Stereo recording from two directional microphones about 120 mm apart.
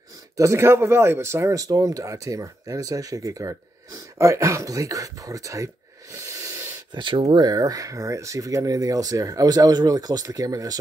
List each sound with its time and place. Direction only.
0.4 s speech: 25° right (ahead or behind)
6.9 s speech: 40° right (ahead or behind)